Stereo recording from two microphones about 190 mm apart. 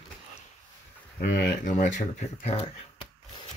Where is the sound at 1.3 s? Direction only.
45° left (ahead or behind).